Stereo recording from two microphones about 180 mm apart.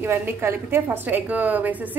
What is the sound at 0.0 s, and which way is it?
A woman's voice, 10° right (ahead or behind).